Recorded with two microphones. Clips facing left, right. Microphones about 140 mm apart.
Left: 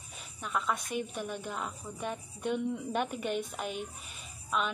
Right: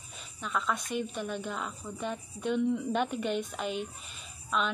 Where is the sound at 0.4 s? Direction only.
10° left (ahead or behind).